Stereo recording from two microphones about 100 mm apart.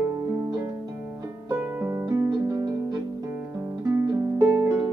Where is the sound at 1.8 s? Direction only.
25° right (ahead or behind).